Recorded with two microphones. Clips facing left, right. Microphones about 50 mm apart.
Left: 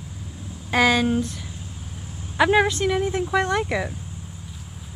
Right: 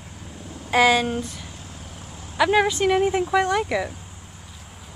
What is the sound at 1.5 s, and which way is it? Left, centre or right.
Vehicle, right.